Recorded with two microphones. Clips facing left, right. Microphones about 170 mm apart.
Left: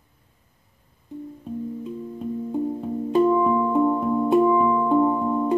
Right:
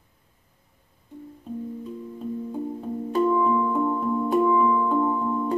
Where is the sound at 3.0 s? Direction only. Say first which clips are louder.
Left 3 dB; 20° left (ahead or behind).